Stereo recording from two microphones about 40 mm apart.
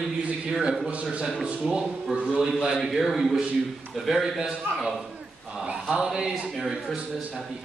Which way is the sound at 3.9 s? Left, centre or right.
Centre.